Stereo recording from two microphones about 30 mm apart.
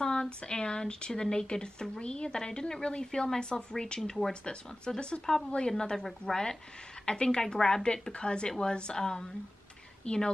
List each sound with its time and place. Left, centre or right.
0.0 s speech: left